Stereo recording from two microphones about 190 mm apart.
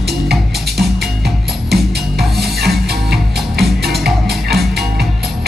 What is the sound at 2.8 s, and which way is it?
Music, 55° right (ahead or behind).